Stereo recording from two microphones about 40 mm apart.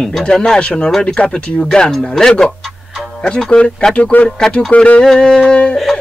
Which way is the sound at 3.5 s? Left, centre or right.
Centre.